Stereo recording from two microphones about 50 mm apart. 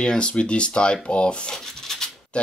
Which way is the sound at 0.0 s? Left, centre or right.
Centre.